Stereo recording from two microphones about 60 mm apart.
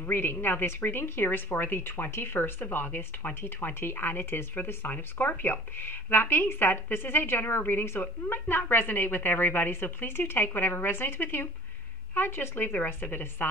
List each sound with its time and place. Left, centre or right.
0.0 s a woman's voice: left